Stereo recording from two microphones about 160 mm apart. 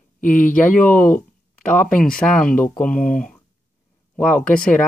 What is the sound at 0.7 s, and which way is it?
Speech, 60° left (ahead or behind).